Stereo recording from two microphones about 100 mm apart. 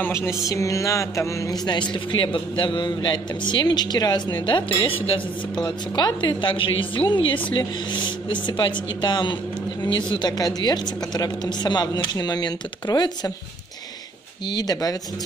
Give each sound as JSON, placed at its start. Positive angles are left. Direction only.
{"t": 0.0, "sound": "music", "side_deg": 25}
{"t": 4.5, "sound": "a woman's voice", "side_deg": 55}
{"t": 5.6, "sound": "a woman's voice", "side_deg": 45}
{"t": 8.3, "sound": "music", "side_deg": 50}
{"t": 14.5, "sound": "speech", "side_deg": 40}